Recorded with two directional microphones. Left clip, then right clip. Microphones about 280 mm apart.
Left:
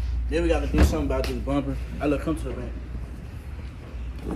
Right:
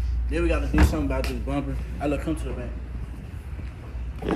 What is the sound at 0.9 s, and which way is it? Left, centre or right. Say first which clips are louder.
Speech: left 1 dB; centre.